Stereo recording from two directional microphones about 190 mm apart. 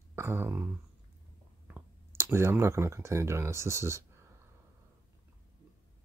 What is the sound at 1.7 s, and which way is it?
Speech, 15° right (ahead or behind).